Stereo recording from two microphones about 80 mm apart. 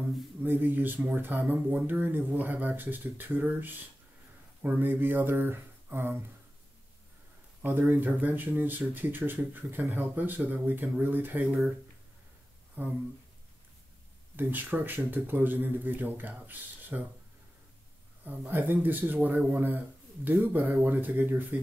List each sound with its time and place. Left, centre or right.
0.4 s speech: right
7.6 s speech: right
12.8 s speech: right
14.3 s speech: right
18.2 s speech: right